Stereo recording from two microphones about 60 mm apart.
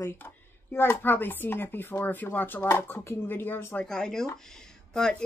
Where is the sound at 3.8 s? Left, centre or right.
Centre.